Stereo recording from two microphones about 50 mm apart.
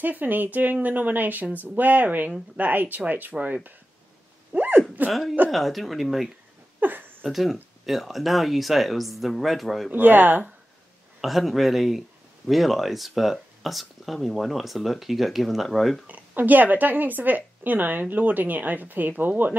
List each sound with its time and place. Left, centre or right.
0.0 s speech: right
3.3 s speech: right
4.5 s sneeze: right
5.5 s speech: centre
6.8 s a sound: right
7.2 s speech: centre
9.8 s speech: right
11.1 s speech: centre
16.1 s speech: right